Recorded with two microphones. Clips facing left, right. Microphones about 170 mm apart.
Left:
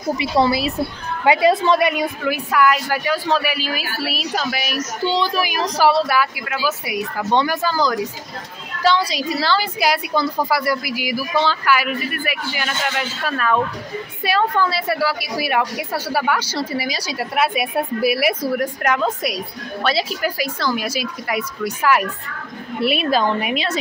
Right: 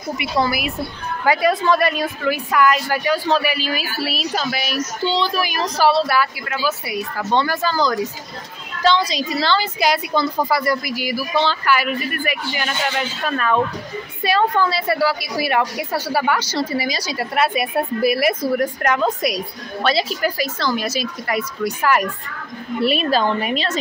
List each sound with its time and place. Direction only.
0.2 s a woman's voice: 30° left (ahead or behind); by 23.8 s 10° left (ahead or behind)